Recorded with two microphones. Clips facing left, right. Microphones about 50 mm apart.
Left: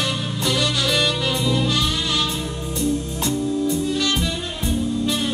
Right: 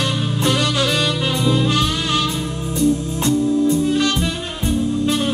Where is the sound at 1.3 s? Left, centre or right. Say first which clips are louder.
Right 3 dB; right.